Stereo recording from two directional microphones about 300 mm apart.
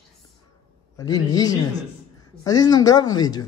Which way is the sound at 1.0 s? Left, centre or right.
Centre.